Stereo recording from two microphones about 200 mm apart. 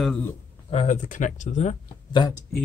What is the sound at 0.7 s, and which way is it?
Speech, 35° left (ahead or behind).